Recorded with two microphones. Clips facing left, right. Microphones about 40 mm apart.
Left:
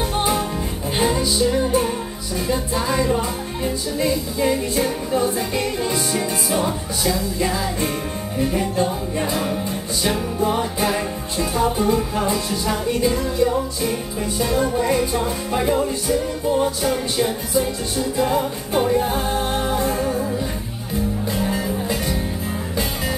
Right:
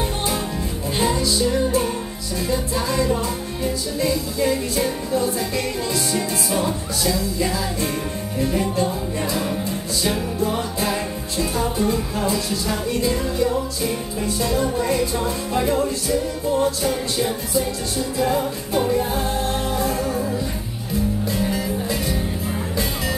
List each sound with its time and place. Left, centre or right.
0.9 s music: left
6.1 s music: centre
20.1 s music: centre